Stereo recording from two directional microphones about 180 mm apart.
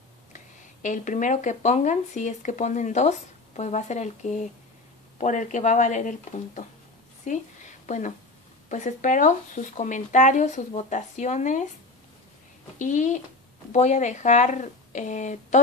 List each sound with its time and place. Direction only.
0.8 s a woman's voice: 45° left (ahead or behind)
12.7 s speech: 45° left (ahead or behind)